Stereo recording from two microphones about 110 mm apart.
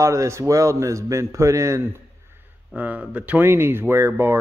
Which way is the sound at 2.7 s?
10° right (ahead or behind).